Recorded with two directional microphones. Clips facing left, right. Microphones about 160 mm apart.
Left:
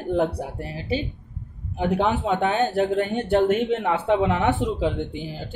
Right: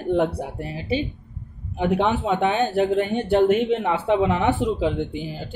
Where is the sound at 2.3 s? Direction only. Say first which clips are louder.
Right 1 dB; 10° right (ahead or behind).